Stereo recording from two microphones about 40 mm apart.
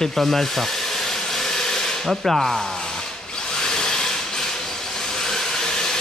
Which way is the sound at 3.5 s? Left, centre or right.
Centre.